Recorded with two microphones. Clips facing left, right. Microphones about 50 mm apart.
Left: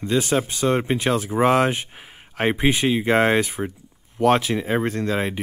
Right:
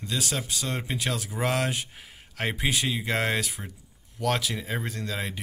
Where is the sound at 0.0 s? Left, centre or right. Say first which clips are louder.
Left 10 dB; left.